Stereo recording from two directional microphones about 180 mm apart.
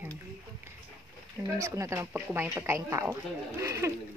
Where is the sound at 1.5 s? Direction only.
15° right (ahead or behind).